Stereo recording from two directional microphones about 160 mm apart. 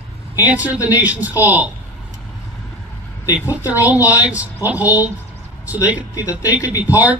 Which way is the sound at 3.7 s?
10° right (ahead or behind).